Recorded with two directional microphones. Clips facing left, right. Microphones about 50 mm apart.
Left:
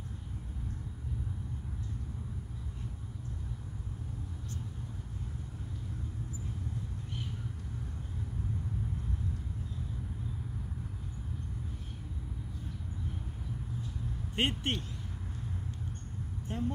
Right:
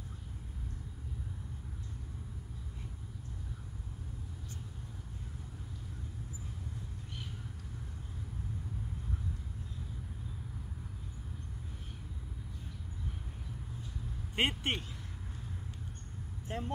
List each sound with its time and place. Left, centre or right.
14.3 s speech: centre
16.4 s speech: right